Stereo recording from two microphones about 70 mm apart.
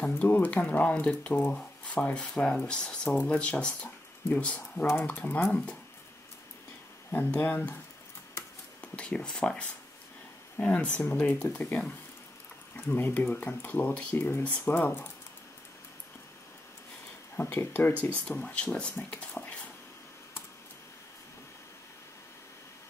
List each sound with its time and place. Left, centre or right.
0.2 s speech: left
7.1 s speech: left
8.8 s speech: centre
12.8 s speech: left
17.4 s speech: left
18.1 s speech: centre